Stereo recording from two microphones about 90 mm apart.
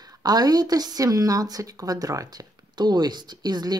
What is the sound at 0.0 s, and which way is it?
A woman's voice, 45° right (ahead or behind).